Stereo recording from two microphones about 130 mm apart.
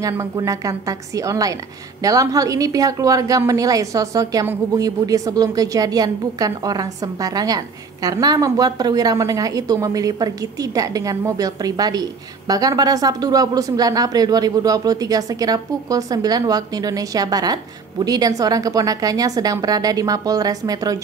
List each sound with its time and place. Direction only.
0.1 s a woman's voice: 20° right (ahead or behind)